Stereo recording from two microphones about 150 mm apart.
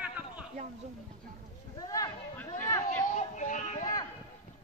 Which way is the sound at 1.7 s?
25° left (ahead or behind).